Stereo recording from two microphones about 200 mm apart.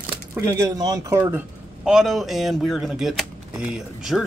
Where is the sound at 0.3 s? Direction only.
15° right (ahead or behind).